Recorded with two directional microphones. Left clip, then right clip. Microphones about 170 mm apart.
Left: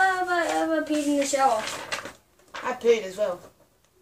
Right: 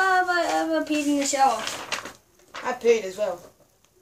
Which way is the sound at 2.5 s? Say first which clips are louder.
Right 1 dB; 10° left (ahead or behind).